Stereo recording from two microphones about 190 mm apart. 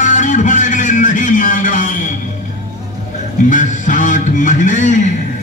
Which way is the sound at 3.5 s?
40° left (ahead or behind).